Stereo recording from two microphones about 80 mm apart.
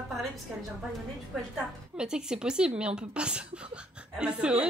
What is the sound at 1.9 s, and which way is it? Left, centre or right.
Speech, centre.